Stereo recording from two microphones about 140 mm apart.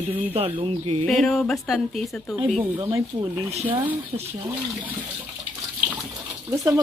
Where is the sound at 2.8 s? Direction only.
30° right (ahead or behind).